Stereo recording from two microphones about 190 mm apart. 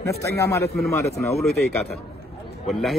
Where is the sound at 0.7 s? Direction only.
Centre (ahead or behind).